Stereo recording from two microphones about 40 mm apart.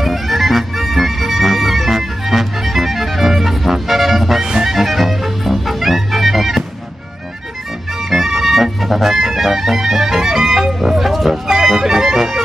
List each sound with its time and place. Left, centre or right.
0.0 s music: centre
4.4 s music: centre
4.7 s music: centre
8.1 s music: centre